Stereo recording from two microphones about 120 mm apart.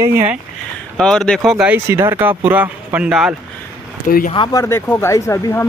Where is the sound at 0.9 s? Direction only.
5° left (ahead or behind).